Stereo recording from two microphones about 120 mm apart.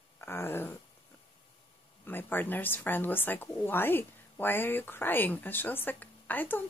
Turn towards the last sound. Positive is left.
turn(degrees=15)  # may be behind; listen again after turning